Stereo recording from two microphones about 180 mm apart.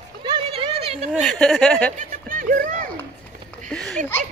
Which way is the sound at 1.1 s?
Centre (ahead or behind).